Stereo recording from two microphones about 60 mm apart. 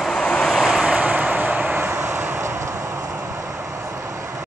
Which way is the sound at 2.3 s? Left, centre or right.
Right.